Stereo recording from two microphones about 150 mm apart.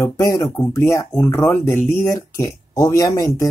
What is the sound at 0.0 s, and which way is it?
Speech, 20° left (ahead or behind).